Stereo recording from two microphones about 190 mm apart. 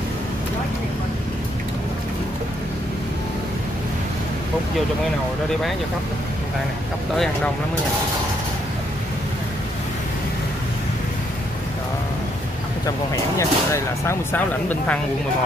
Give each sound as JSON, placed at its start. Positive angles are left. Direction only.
{"t": 12.8, "sound": "speech", "side_deg": 15}